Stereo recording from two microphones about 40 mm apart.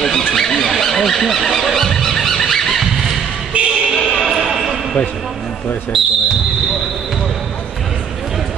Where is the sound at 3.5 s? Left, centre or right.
Right.